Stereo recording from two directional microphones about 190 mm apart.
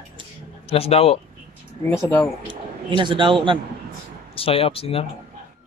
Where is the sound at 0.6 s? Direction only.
30° left (ahead or behind).